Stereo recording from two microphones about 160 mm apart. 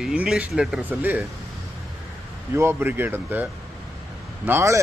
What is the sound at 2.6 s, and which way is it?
A man's voice, 15° right (ahead or behind).